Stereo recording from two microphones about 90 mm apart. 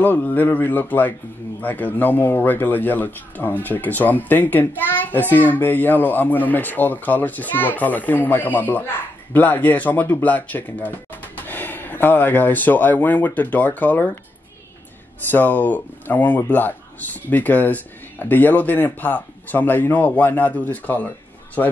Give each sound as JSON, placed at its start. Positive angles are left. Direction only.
{"t": 0.0, "sound": "speech", "side_deg": 20}
{"t": 15.3, "sound": "speech", "side_deg": 20}